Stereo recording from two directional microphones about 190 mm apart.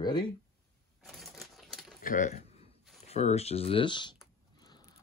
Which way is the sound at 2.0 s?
40° left (ahead or behind).